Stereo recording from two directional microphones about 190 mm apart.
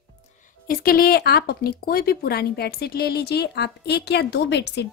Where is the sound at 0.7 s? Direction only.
50° left (ahead or behind).